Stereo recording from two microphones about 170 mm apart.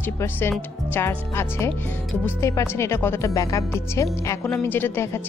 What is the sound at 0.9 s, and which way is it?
A woman's voice, 10° left (ahead or behind).